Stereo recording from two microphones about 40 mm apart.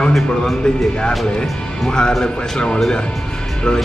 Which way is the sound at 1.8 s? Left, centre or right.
Centre.